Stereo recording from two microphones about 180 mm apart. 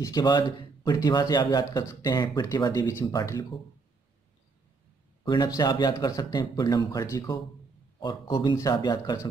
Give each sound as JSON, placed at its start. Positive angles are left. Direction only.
{"t": 0.0, "sound": "speech", "side_deg": 20}
{"t": 5.2, "sound": "speech", "side_deg": 25}